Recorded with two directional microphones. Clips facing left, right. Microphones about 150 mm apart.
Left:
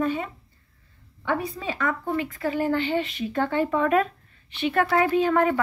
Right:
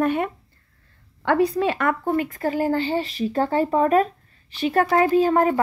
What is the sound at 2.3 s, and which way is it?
Speech, 40° right (ahead or behind).